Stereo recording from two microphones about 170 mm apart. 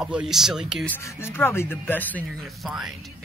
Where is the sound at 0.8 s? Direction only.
15° left (ahead or behind).